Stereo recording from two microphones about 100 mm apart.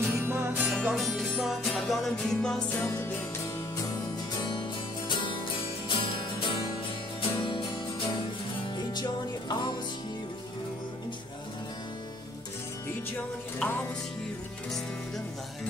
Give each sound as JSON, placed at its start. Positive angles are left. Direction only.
{"t": 0.0, "sound": "music", "side_deg": -20}
{"t": 0.8, "sound": "music", "side_deg": 0}
{"t": 2.7, "sound": "music", "side_deg": 25}
{"t": 4.4, "sound": "music", "side_deg": 50}
{"t": 8.6, "sound": "music", "side_deg": 45}
{"t": 13.6, "sound": "music", "side_deg": 20}